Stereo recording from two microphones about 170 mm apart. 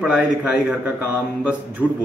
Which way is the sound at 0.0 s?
5° right (ahead or behind).